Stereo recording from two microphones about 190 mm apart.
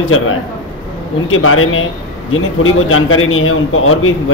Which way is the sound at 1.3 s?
90° left.